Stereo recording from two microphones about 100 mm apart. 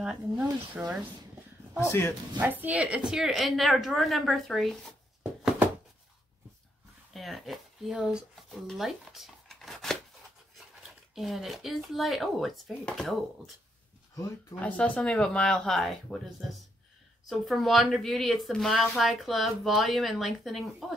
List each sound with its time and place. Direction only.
0.0 s speech: 10° right (ahead or behind)
1.8 s speech: 25° left (ahead or behind)
2.4 s a woman's voice: 20° right (ahead or behind); by 4.9 s centre (ahead or behind)
7.2 s a woman's voice: centre (ahead or behind)